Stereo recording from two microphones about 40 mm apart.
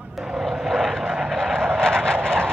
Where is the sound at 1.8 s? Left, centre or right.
Centre.